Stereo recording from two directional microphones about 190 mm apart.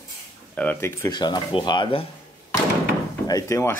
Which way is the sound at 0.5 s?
10° left (ahead or behind).